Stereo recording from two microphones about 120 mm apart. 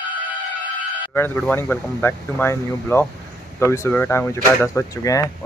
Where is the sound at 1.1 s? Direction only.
15° left (ahead or behind).